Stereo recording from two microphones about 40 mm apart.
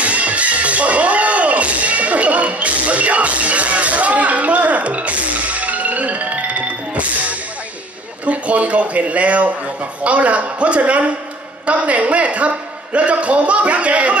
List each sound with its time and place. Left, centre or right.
0.0 s music: right
8.3 s a man's voice: right